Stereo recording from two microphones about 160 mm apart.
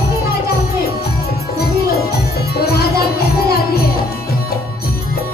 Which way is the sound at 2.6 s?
75° left (ahead or behind).